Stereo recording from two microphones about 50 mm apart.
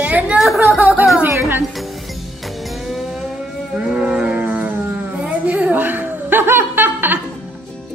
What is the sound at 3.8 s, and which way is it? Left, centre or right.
Music, centre.